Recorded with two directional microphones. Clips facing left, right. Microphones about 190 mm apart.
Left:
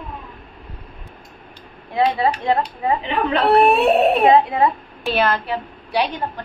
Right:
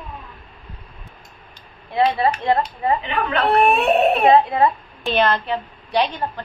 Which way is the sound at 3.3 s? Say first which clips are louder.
Left 3 dB; 30° left (ahead or behind).